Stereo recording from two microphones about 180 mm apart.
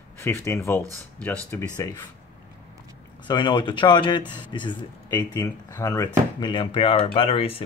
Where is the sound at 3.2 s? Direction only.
25° left (ahead or behind).